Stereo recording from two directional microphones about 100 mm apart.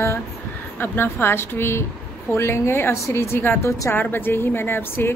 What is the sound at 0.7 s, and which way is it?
A woman's voice, 20° left (ahead or behind).